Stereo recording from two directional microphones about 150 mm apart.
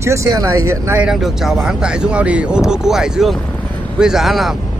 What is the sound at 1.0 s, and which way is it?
Speech, centre (ahead or behind).